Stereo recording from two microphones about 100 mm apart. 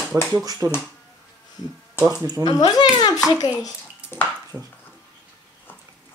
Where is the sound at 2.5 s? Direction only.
45° left (ahead or behind).